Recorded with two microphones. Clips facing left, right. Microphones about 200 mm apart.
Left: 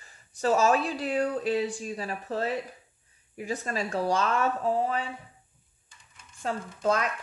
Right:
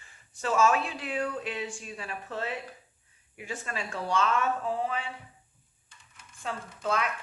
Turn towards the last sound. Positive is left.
turn(degrees=40)  # may be behind; listen again after turning